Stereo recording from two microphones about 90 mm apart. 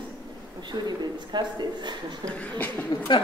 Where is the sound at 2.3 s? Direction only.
15° left (ahead or behind).